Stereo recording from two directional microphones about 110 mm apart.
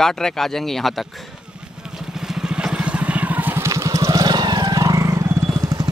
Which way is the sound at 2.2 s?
5° right (ahead or behind).